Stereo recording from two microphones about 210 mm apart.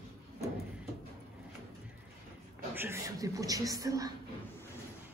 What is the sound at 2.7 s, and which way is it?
A woman's voice, 10° right (ahead or behind).